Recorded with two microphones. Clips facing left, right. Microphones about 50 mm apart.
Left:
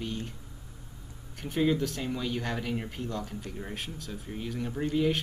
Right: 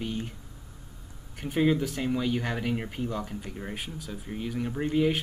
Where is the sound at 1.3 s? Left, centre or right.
Centre.